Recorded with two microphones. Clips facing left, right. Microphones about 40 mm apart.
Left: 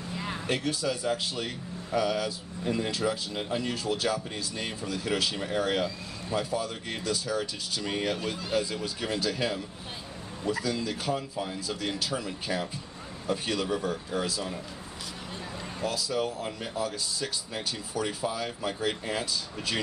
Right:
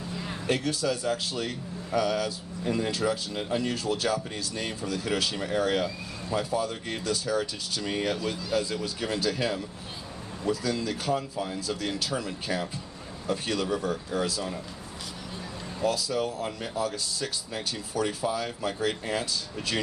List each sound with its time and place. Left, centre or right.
0.1 s a sound: centre
0.5 s speech: centre
15.8 s speech: centre